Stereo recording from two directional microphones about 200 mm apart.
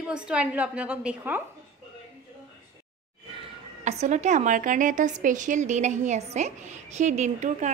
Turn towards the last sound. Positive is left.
turn(degrees=-35)  # may be behind; listen again after turning